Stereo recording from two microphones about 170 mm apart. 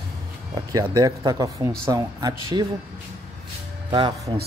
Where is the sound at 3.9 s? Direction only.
30° right (ahead or behind).